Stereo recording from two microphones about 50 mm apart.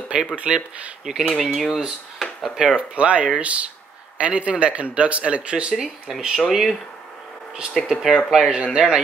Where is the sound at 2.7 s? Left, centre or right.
Right.